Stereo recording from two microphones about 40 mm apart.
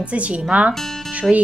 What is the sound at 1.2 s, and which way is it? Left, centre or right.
Speech, centre.